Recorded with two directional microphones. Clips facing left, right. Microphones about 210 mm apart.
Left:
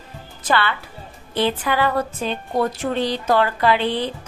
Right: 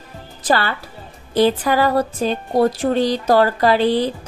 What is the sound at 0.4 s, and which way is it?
A woman's voice, 40° right (ahead or behind).